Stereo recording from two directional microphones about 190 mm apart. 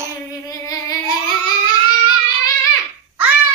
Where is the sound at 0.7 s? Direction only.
20° left (ahead or behind).